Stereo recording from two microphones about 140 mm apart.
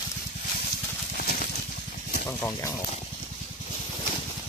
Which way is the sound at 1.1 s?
90° left.